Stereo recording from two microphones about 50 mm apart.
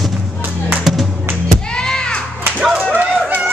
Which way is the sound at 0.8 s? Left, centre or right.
Centre.